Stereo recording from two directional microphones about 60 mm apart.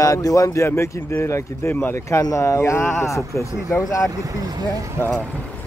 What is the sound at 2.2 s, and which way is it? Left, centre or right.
Speech, left.